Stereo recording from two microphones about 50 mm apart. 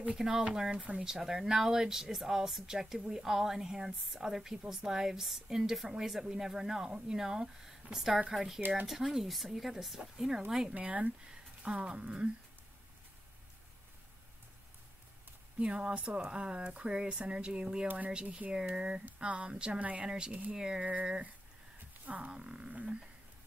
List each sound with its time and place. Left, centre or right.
0.2 s a woman's voice: centre
0.5 s speech: centre
1.0 s a woman's voice: centre
8.5 s speech: right
8.8 s speech: centre
10.7 s speech: right
15.6 s speech: right
17.8 s speech: right
18.5 s a woman's voice: centre
19.8 s speech: right
20.1 s a woman's voice: centre
20.8 s speech: right
21.7 s a sound: right
22.3 s speech: centre